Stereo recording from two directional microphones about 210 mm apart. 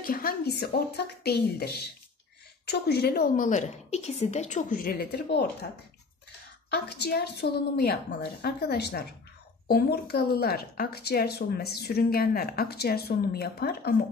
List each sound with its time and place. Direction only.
0.0 s a woman's voice: 45° left (ahead or behind)
6.7 s a woman's voice: 50° left (ahead or behind)